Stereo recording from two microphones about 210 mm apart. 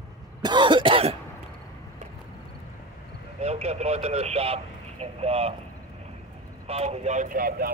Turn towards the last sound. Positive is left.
turn(degrees=-45)  # may be behind; listen again after turning